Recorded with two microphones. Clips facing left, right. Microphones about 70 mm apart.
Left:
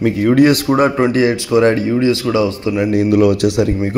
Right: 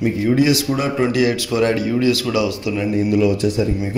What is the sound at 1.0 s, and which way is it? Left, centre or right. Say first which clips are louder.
Speech: left 3 dB; left.